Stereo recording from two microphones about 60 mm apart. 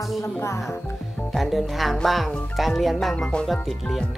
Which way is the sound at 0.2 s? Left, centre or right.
Left.